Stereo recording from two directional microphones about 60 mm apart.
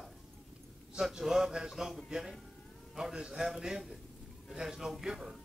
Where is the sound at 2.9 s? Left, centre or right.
Centre.